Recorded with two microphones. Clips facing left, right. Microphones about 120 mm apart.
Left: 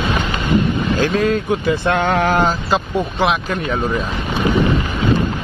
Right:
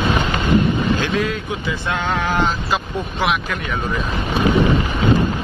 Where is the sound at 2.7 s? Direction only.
30° left (ahead or behind).